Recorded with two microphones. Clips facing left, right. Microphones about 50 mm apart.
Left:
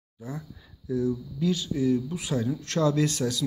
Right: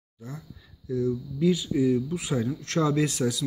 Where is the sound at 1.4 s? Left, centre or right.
Centre.